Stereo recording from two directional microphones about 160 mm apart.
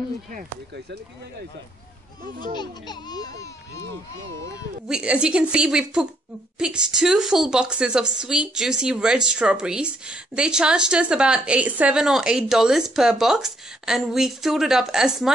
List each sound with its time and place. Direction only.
0.3 s speech: 75° right (ahead or behind)
2.2 s speech: 60° right (ahead or behind)
2.5 s speech: 25° left (ahead or behind)
4.8 s a woman's voice: 5° right (ahead or behind)